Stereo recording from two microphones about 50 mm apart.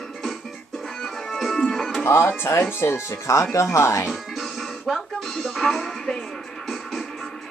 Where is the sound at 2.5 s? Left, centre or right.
Left.